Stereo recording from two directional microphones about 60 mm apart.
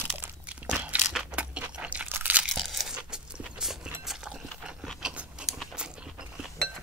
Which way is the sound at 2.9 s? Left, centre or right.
Centre.